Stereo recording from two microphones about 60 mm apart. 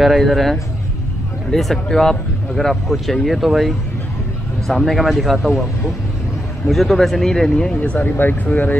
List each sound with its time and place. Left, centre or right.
0.0 s speech: centre
6.7 s speech: centre; by 8.7 s left